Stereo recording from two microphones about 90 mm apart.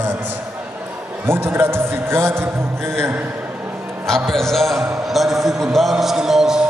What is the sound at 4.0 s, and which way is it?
A man's voice, 5° left (ahead or behind).